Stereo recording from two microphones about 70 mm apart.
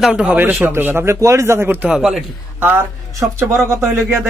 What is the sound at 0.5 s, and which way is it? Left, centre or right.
Speech, right.